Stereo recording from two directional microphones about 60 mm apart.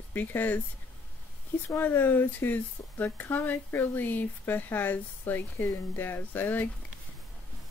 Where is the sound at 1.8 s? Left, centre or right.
Left.